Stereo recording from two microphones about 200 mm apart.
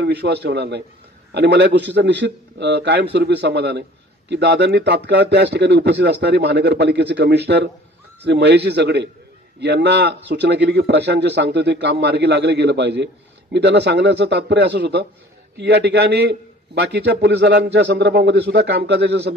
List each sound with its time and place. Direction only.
0.0 s a man's voice: 55° right (ahead or behind)